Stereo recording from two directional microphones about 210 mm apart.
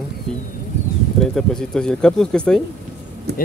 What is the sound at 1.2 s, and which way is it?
Speech, 5° left (ahead or behind).